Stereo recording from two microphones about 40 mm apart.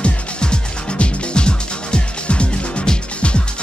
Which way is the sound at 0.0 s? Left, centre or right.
Left.